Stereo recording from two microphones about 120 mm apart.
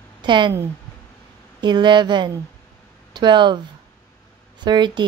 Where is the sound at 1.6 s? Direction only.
40° right (ahead or behind).